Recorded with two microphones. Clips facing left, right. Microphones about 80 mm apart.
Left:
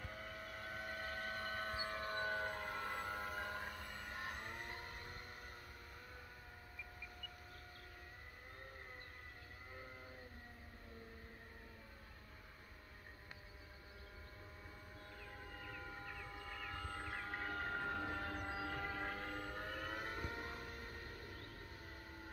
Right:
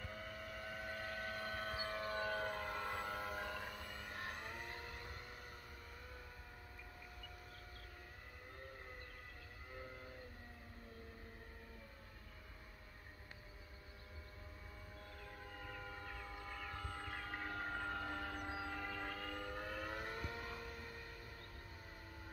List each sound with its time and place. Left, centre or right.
0.0 s vehicle: left
1.6 s civil defense siren: left
2.3 s music: centre
3.4 s a sound: left
4.5 s vehicle: left
15.8 s a sound: centre
16.1 s a sound: centre
16.9 s train: centre
18.4 s train: left
19.7 s vehicle: centre
20.1 s vehicle: left